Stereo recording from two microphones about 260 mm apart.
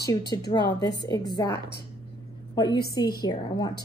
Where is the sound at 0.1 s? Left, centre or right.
Centre.